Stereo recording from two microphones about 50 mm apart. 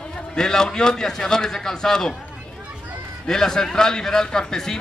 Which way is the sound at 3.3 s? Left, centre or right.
Centre.